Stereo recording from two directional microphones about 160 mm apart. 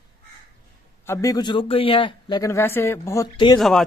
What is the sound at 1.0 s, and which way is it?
A man's voice, 20° left (ahead or behind).